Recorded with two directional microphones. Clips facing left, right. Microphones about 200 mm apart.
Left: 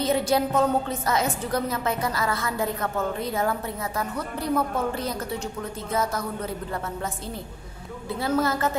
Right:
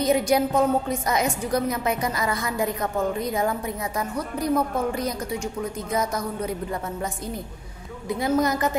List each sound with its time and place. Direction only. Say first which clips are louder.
0.0 s a woman's voice: right 2 dB; 15° right (ahead or behind)
8.2 s a woman's voice: right 2 dB; 15° right (ahead or behind)